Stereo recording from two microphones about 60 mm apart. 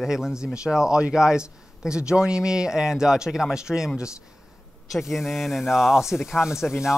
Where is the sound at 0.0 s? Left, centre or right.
Centre.